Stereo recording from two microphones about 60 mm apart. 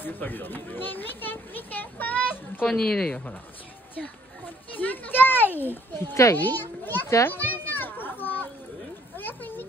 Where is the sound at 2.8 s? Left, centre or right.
Centre.